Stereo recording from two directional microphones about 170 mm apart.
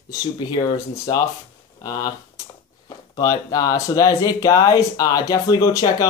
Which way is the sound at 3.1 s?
25° left (ahead or behind).